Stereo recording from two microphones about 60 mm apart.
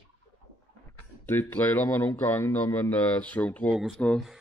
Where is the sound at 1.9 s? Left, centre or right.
Left.